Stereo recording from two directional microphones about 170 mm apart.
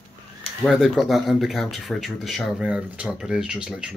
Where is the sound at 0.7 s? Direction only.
Centre (ahead or behind).